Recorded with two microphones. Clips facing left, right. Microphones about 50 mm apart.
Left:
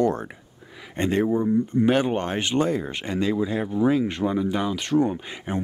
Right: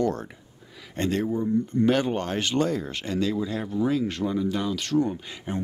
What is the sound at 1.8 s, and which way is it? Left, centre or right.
Speech, centre.